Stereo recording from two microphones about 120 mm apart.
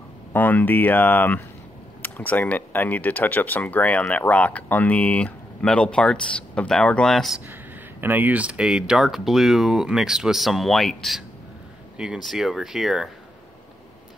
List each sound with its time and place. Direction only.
0.3 s speech: 15° left (ahead or behind)
8.0 s speech: 15° right (ahead or behind)